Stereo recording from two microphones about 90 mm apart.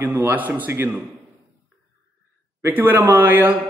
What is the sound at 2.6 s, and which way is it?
A man's voice, 20° right (ahead or behind).